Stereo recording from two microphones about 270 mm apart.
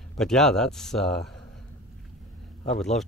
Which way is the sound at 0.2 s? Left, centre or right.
Centre.